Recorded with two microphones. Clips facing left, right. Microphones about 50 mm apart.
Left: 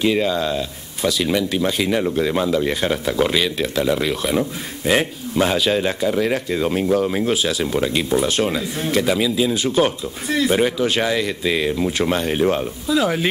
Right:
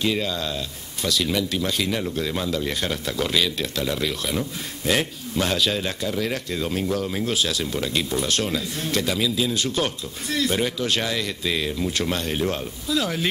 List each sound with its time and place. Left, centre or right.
0.0 s speech: centre